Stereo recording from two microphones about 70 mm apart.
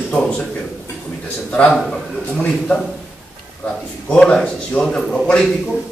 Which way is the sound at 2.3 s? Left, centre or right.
Centre.